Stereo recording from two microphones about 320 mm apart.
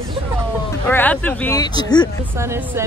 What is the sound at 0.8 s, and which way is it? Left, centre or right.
Speech, centre.